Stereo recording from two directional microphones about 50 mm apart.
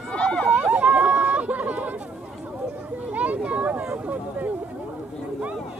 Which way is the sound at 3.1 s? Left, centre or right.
Right.